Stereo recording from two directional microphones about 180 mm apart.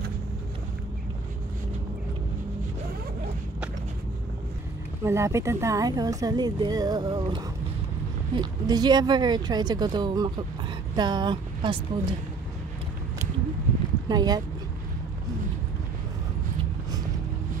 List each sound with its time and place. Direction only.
5.0 s speech: 15° right (ahead or behind)
14.0 s speech: 20° right (ahead or behind)